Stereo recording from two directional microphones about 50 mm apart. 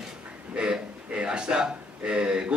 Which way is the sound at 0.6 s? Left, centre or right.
Centre.